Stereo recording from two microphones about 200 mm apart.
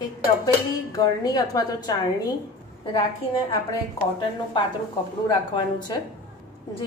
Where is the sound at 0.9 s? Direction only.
20° left (ahead or behind).